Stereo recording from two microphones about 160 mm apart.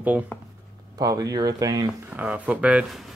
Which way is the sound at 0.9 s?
25° right (ahead or behind).